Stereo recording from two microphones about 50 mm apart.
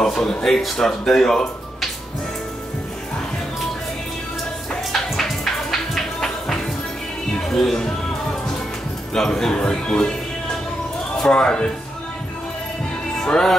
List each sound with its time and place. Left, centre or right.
0.0 s speech: centre
4.9 s music: centre
9.1 s speech: centre
11.2 s speech: centre
13.2 s speech: centre